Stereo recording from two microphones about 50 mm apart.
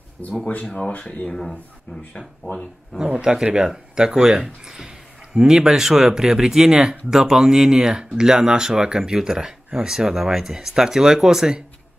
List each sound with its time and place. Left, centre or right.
0.2 s speech: left
1.2 s speech: centre
3.2 s speech: centre